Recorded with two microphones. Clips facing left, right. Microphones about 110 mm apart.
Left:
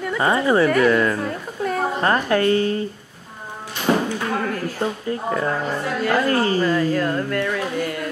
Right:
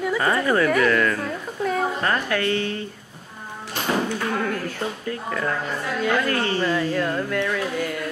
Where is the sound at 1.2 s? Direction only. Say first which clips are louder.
Left 1 dB; centre (ahead or behind).